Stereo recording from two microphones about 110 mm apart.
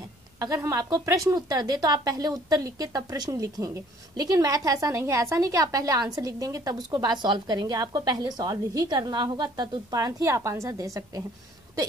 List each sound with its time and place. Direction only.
0.4 s a woman's voice: 30° right (ahead or behind)